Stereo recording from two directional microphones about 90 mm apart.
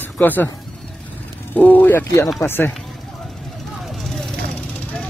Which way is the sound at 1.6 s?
20° left (ahead or behind).